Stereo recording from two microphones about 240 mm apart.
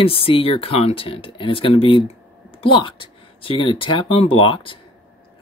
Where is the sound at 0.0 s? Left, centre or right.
Left.